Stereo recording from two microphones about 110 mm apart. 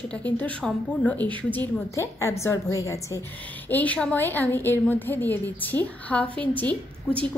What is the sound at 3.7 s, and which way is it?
A woman's voice, 15° left (ahead or behind).